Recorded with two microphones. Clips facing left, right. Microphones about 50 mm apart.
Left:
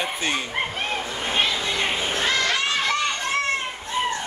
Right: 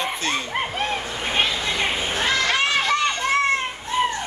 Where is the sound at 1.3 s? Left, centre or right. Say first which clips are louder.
Right 1 dB; centre.